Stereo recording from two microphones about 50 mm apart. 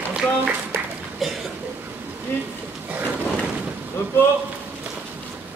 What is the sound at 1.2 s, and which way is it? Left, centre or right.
Speech, centre.